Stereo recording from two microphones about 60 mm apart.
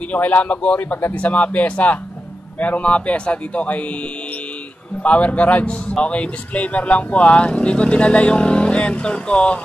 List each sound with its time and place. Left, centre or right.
0.1 s a man's voice: left
5.0 s a man's voice: left